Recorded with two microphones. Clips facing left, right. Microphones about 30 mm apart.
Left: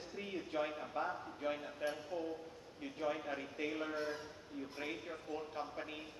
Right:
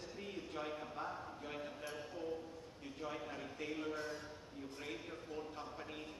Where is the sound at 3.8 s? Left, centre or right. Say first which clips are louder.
Left 3 dB; left.